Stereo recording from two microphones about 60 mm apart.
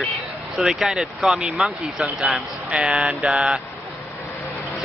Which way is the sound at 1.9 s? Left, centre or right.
Centre.